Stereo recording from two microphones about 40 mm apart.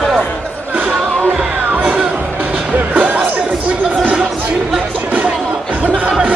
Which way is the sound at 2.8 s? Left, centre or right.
Right.